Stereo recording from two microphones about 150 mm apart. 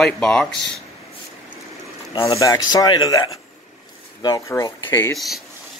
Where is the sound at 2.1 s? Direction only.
35° left (ahead or behind).